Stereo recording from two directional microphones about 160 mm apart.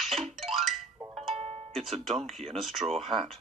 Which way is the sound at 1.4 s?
45° right (ahead or behind).